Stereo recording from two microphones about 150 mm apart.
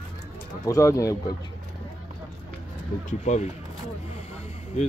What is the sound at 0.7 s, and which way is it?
Speech, 20° left (ahead or behind).